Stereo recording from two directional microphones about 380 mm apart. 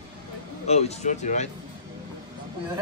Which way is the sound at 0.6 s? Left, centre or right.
Centre.